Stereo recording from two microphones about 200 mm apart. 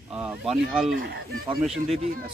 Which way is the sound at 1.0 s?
55° right (ahead or behind).